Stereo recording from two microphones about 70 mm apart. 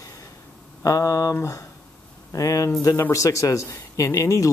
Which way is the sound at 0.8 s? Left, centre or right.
Left.